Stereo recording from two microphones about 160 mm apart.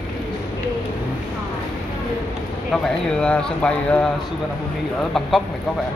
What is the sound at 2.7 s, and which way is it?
Speech, 5° left (ahead or behind).